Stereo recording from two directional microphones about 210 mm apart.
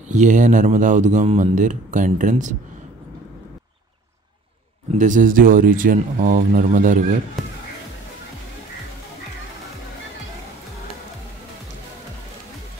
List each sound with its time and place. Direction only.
0.1 s speech: 35° right (ahead or behind)
4.9 s speech: 35° right (ahead or behind)
7.4 s music: centre (ahead or behind)